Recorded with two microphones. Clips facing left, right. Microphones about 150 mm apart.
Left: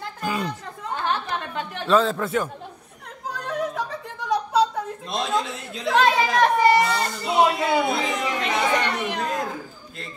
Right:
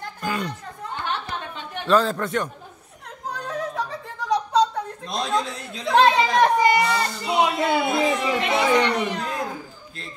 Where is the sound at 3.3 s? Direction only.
Centre (ahead or behind).